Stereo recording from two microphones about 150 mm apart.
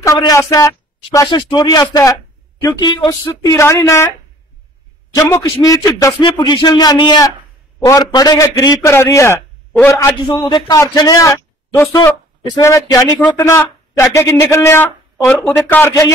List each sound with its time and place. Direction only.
0.2 s a man's voice: 25° left (ahead or behind)
5.1 s a man's voice: 20° left (ahead or behind)
9.7 s a sound: 10° left (ahead or behind)
9.9 s a man's voice: 20° left (ahead or behind)